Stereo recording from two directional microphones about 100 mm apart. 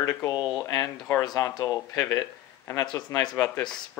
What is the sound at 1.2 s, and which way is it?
Speech, 40° left (ahead or behind).